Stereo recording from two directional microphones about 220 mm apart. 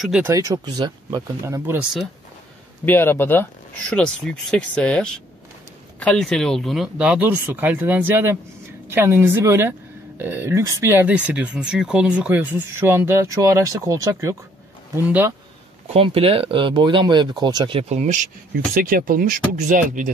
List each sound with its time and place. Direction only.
0.0 s speech: 5° right (ahead or behind)
0.5 s a woman's voice: 20° right (ahead or behind)
2.8 s a man's voice: 10° left (ahead or behind); by 15.3 s 10° right (ahead or behind)
15.9 s speech: 25° right (ahead or behind)